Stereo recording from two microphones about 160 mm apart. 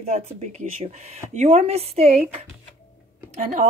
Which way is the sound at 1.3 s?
40° right (ahead or behind).